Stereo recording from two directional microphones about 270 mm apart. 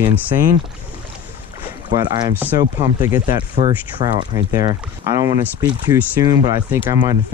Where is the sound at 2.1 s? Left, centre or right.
Centre.